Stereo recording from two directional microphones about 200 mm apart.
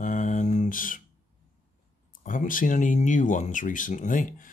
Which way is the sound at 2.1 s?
40° left (ahead or behind).